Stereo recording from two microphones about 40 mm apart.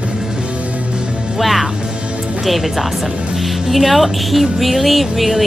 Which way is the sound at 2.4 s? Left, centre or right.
Centre.